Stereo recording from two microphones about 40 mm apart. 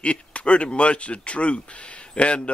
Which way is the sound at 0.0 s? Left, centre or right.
Left.